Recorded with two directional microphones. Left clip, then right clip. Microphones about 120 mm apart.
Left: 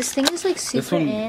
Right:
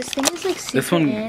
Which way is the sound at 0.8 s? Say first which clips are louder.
Right 6 dB; 35° right (ahead or behind).